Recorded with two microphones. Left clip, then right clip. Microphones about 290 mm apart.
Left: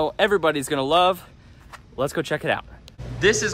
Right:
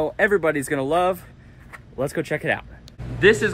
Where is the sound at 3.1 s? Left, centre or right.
Centre.